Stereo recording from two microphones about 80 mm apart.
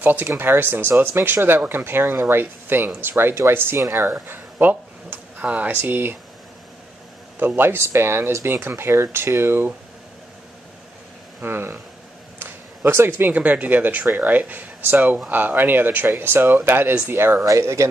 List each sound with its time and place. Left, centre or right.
0.0 s speech: right
7.3 s speech: right
11.4 s speech: right
12.4 s a sound: right
13.3 s speech: centre; by 17.8 s right